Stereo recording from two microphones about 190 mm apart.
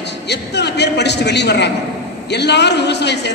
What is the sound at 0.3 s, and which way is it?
A man's voice, 65° left (ahead or behind).